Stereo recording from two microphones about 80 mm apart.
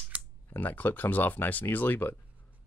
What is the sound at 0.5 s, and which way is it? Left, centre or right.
Speech, left.